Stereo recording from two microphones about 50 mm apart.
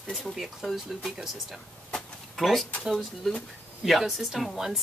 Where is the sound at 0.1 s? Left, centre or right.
Centre.